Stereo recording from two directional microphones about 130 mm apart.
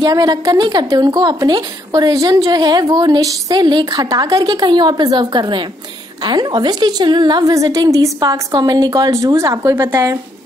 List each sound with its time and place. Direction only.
0.0 s a woman's voice: 30° right (ahead or behind)